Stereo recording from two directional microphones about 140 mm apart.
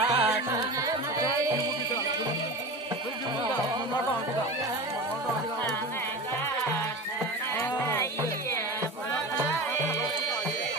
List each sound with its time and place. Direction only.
0.0 s carnatic music: 45° right (ahead or behind)
7.5 s music: 20° left (ahead or behind)